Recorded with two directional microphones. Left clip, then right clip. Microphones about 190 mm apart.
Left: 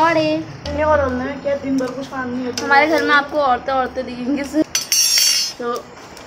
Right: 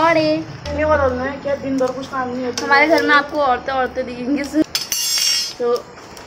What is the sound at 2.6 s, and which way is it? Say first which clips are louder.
A woman's voice: even; centre (ahead or behind).